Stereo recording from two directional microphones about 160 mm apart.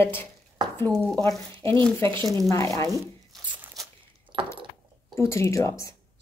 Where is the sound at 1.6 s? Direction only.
30° right (ahead or behind).